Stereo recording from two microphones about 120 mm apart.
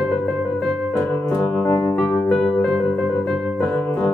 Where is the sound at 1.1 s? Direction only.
10° left (ahead or behind).